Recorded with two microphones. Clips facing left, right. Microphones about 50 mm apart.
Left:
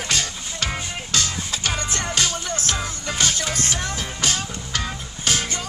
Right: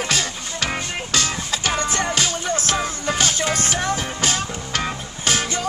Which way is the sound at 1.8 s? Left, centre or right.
Right.